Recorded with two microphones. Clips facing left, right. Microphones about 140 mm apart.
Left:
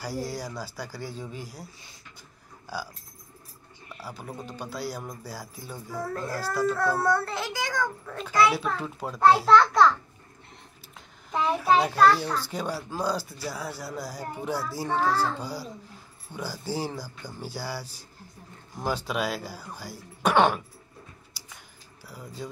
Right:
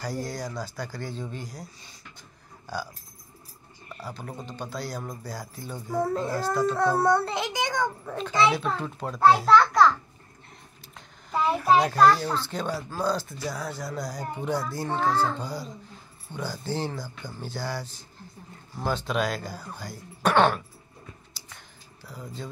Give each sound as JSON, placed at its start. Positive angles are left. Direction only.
{"t": 0.0, "sound": "speech", "side_deg": 10}
{"t": 3.9, "sound": "speech", "side_deg": 5}
{"t": 5.9, "sound": "a child's voice", "side_deg": -20}
{"t": 8.5, "sound": "a child's voice", "side_deg": 5}
{"t": 11.0, "sound": "a child's voice", "side_deg": 0}
{"t": 21.4, "sound": "a sound", "side_deg": 10}
{"t": 22.0, "sound": "speech", "side_deg": 10}